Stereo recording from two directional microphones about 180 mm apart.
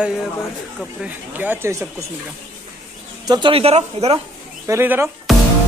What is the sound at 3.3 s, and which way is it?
Speech, 25° right (ahead or behind).